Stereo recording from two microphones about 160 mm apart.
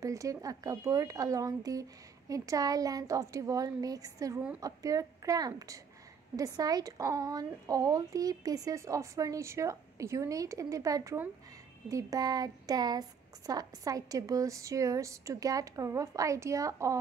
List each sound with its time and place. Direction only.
0.0 s a woman's voice: 20° right (ahead or behind)